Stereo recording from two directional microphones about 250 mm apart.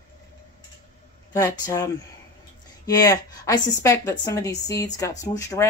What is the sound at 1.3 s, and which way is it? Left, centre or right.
A woman's voice, centre.